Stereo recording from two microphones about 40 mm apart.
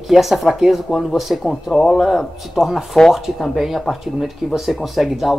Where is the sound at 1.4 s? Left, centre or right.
Centre.